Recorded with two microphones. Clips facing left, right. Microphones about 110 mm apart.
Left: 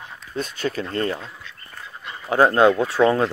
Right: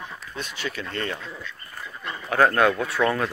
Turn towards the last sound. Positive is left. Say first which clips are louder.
# left 5 dB
turn(degrees=25)  # may be behind; listen again after turning